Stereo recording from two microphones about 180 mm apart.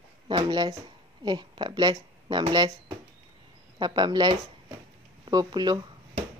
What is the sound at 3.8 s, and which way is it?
Speech, 25° right (ahead or behind).